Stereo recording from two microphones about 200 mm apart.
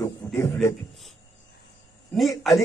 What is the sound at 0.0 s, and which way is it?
Speech, 15° left (ahead or behind).